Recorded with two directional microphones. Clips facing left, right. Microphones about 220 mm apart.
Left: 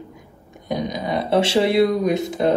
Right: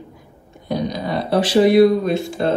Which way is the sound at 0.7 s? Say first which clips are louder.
Right 2 dB; 20° left (ahead or behind).